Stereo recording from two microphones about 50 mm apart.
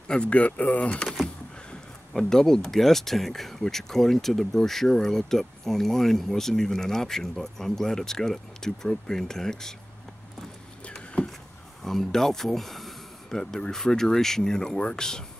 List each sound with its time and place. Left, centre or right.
0.1 s speech: left
1.0 s speech: centre
11.2 s a sound: left
11.8 s speech: centre